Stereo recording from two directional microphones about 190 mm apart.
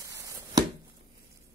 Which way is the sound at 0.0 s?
15° right (ahead or behind).